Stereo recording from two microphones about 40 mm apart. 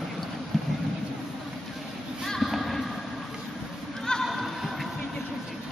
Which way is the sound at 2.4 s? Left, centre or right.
Centre.